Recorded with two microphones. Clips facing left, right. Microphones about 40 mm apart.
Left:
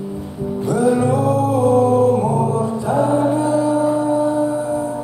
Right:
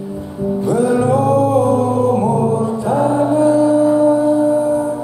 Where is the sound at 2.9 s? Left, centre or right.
Right.